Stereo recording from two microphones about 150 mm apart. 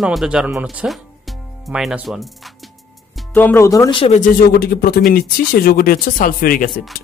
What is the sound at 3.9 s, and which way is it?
Speech, 40° left (ahead or behind).